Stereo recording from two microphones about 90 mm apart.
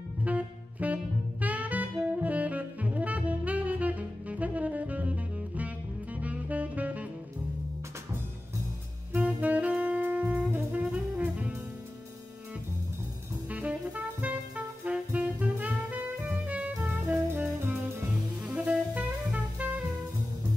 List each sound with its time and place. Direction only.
0.2 s saxophone: 15° right (ahead or behind)
6.2 s music: 15° right (ahead or behind)
9.1 s saxophone: 15° right (ahead or behind)
13.5 s music: 15° right (ahead or behind)
18.4 s music: 15° right (ahead or behind)